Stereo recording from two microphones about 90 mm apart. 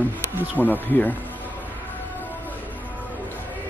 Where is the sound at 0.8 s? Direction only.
20° left (ahead or behind).